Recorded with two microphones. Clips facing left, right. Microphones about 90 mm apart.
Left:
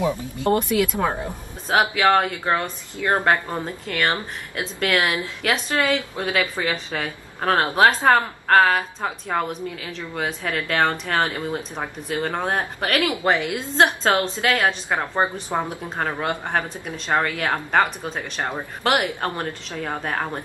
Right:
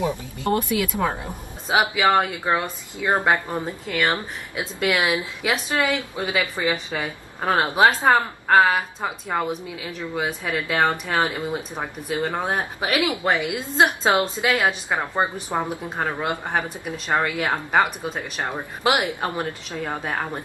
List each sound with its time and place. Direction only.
0.4 s speech: 20° left (ahead or behind)
1.2 s a woman's voice: 5° right (ahead or behind)